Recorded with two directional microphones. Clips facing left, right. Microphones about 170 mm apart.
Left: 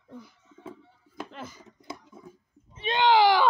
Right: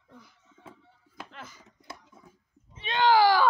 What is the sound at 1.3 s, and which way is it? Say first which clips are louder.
Chopping: left 5 dB; 30° left (ahead or behind).